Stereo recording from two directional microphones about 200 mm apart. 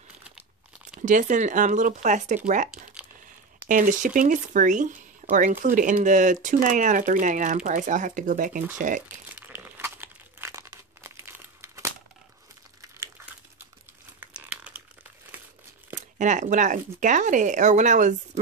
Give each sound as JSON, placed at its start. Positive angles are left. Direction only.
{"t": 1.0, "sound": "speech", "side_deg": -40}
{"t": 2.7, "sound": "crumpling", "side_deg": -5}
{"t": 3.6, "sound": "speech", "side_deg": -40}
{"t": 9.3, "sound": "crumpling", "side_deg": -10}
{"t": 14.2, "sound": "crumpling", "side_deg": -5}
{"t": 16.0, "sound": "speech", "side_deg": -40}